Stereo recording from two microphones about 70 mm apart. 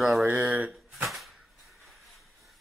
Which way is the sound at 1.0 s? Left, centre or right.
Centre.